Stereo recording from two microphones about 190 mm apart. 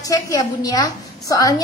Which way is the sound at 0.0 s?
20° left (ahead or behind).